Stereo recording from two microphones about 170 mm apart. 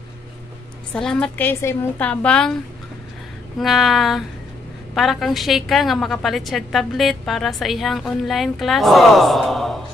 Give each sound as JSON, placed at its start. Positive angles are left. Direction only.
{"t": 0.9, "sound": "a woman's voice", "side_deg": 5}
{"t": 3.5, "sound": "a woman's voice", "side_deg": 0}